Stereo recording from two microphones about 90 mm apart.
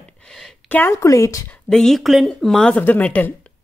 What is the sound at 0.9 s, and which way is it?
Speech, 35° left (ahead or behind).